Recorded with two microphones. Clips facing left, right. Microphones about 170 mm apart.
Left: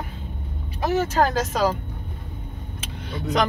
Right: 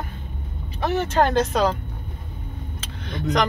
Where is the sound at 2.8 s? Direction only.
10° left (ahead or behind).